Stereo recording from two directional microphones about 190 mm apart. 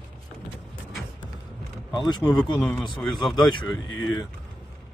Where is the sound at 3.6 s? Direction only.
90° left.